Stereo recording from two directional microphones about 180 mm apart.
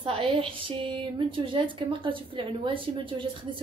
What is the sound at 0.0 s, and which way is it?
A woman's voice, 30° right (ahead or behind).